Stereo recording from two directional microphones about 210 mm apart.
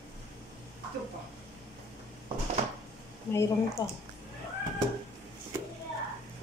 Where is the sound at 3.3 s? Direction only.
15° left (ahead or behind).